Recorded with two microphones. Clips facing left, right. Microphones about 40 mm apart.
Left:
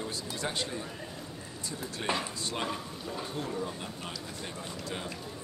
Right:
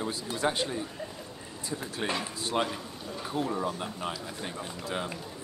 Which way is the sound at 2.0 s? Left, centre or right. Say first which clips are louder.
Even; centre.